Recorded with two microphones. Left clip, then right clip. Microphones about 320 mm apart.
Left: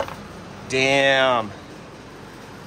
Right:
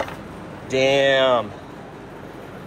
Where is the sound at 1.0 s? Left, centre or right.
Centre.